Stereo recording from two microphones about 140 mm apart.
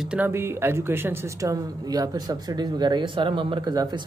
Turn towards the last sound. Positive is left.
turn(degrees=-30)  # may be behind; listen again after turning